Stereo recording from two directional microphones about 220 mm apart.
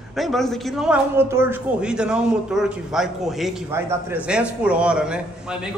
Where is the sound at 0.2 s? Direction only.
Centre (ahead or behind).